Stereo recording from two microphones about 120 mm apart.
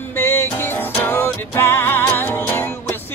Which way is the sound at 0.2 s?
20° left (ahead or behind).